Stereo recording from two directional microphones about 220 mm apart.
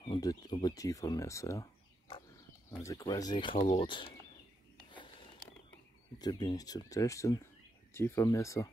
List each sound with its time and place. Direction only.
0.1 s speech: 20° left (ahead or behind)
4.9 s a sound: 20° left (ahead or behind)
6.1 s speech: 20° left (ahead or behind)